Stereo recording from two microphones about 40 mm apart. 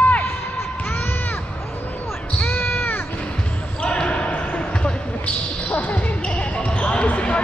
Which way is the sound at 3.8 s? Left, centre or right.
Left.